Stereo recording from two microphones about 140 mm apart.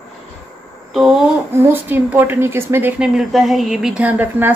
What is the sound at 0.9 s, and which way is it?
Speech, centre (ahead or behind).